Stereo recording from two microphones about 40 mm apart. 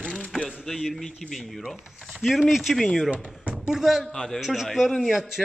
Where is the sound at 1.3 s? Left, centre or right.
Centre.